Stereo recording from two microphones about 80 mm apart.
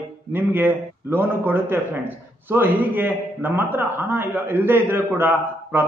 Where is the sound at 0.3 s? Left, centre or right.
Right.